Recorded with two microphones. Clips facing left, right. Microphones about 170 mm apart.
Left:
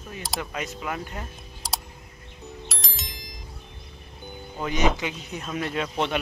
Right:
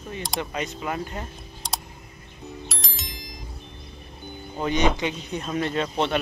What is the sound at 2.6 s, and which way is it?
Music, centre (ahead or behind).